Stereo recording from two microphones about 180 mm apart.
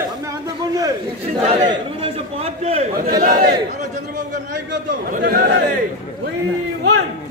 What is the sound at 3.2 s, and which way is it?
Chatter, 50° right (ahead or behind).